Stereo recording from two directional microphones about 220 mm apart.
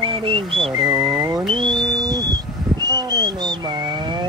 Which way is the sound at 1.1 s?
10° right (ahead or behind).